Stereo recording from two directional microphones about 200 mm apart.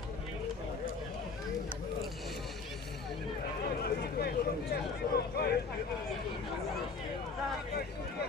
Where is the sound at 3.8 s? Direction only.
50° left (ahead or behind).